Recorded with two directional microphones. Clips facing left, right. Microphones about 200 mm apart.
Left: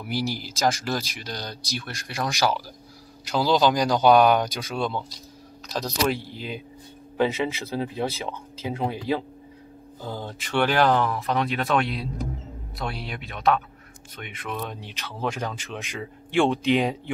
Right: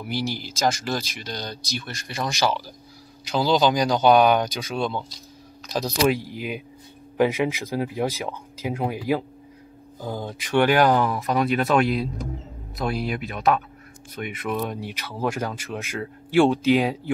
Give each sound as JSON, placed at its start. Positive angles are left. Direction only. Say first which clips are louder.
{"t": 0.0, "sound": "speech", "louder": "even", "side_deg": 5}
{"t": 13.0, "sound": "speech", "louder": "left 1 dB", "side_deg": -5}